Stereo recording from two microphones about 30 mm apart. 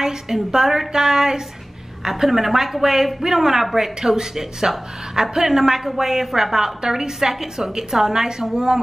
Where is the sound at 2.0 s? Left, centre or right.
Centre.